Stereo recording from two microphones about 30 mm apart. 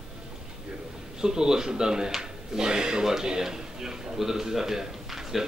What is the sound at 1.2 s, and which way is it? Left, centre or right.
Speech, right.